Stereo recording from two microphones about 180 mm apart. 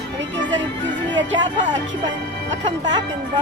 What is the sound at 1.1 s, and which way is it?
Music, 90° right.